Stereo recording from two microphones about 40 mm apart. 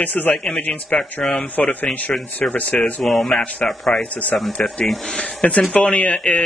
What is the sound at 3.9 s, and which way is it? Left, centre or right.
Speech, left.